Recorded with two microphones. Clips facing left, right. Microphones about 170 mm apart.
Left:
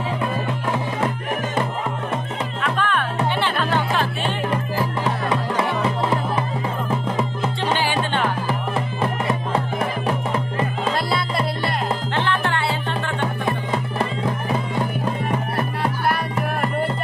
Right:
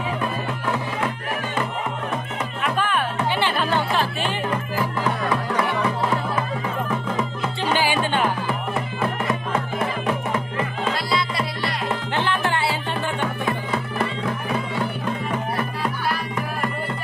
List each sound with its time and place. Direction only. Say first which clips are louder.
2.6 s music: even; 5° right (ahead or behind)
4.7 s music: left 1 dB; 25° left (ahead or behind)
7.7 s music: right 3 dB; 5° right (ahead or behind)
12.3 s music: even; 5° right (ahead or behind)
13.5 s music: left 1 dB; 20° left (ahead or behind)